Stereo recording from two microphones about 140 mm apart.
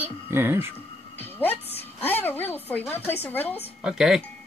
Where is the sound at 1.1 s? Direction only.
15° left (ahead or behind).